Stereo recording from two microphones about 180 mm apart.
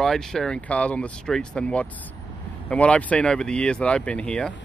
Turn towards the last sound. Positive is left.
turn(degrees=5)  # may be behind; listen again after turning